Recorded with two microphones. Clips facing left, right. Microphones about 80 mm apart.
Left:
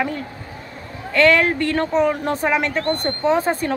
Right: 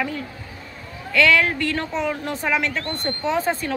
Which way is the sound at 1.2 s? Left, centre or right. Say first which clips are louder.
Left 4 dB; left.